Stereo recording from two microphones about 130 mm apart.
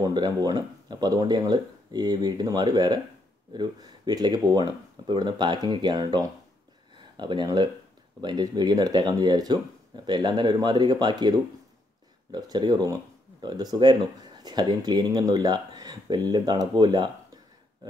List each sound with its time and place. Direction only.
0.0 s speech: 30° right (ahead or behind)